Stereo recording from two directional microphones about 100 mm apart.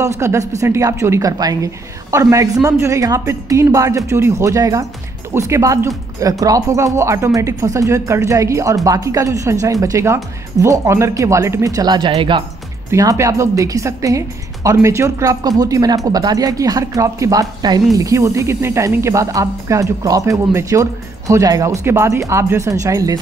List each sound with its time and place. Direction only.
0.0 s speech: 30° right (ahead or behind)
12.1 s speech: 60° right (ahead or behind)
12.9 s speech: 35° right (ahead or behind)